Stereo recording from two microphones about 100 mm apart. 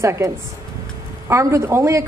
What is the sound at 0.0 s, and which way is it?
Speech, 30° right (ahead or behind).